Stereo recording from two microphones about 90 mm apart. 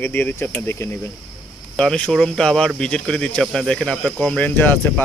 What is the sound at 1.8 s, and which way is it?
Speech, 5° left (ahead or behind).